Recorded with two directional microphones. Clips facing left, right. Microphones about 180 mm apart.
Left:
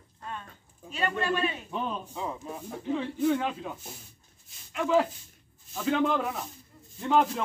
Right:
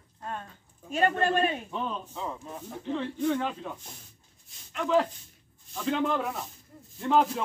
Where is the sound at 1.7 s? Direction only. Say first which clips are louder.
Left 1 dB; 5° left (ahead or behind).